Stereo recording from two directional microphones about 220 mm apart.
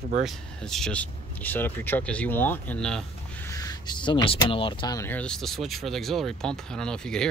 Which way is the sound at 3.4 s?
15° left (ahead or behind).